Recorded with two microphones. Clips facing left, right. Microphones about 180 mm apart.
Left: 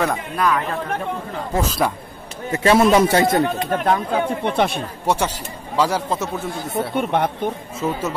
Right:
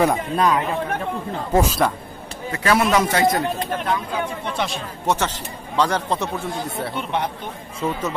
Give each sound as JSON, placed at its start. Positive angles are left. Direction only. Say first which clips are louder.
{"t": 0.0, "sound": "speech", "louder": "right 2 dB", "side_deg": -20}
{"t": 2.5, "sound": "a man's voice", "louder": "left 4 dB", "side_deg": 25}
{"t": 3.7, "sound": "speech", "louder": "left 5 dB", "side_deg": 50}
{"t": 5.0, "sound": "speech", "louder": "left 1 dB", "side_deg": 10}
{"t": 7.0, "sound": "speech", "louder": "left 6 dB", "side_deg": 50}
{"t": 7.8, "sound": "speech", "louder": "left 1 dB", "side_deg": 5}